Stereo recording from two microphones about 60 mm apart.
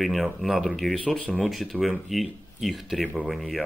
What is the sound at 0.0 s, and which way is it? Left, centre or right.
Speech, centre.